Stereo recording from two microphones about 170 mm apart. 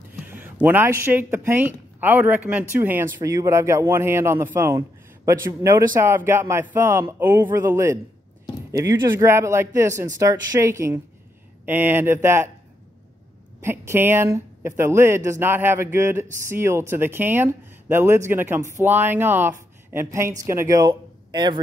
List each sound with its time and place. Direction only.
0.1 s speech: 10° right (ahead or behind)
3.2 s speech: 20° right (ahead or behind)
13.6 s speech: 15° right (ahead or behind)